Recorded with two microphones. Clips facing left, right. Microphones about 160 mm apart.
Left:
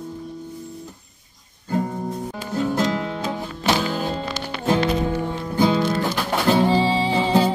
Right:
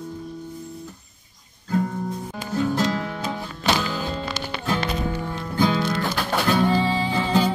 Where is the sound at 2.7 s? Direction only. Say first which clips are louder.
Left 2 dB; 20° left (ahead or behind).